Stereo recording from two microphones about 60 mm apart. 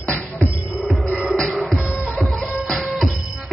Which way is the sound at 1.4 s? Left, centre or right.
Centre.